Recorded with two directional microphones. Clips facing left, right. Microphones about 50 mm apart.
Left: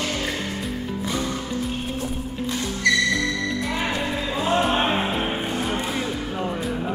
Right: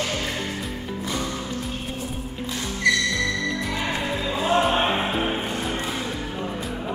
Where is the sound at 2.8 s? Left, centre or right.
Centre.